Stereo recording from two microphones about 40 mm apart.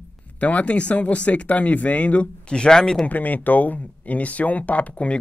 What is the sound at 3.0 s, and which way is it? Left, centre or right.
Speech, left.